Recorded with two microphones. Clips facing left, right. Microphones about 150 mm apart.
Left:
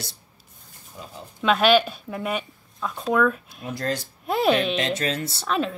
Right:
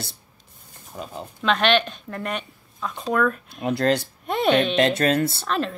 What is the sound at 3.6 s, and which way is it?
Speech, 70° right (ahead or behind).